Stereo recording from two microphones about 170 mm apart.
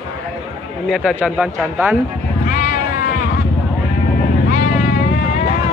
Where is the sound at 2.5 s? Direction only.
55° left (ahead or behind).